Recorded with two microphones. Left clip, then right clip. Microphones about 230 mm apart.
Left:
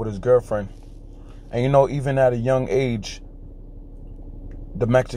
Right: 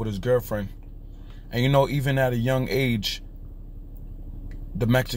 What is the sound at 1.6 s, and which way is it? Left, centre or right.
Speech, centre.